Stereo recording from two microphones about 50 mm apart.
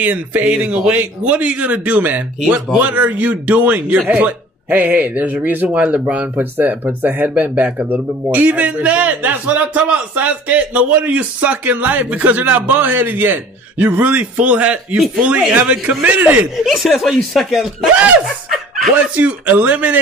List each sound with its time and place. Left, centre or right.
0.0 s a man's voice: right
16.2 s speech: right
16.6 s speech: centre
17.9 s a man's voice: right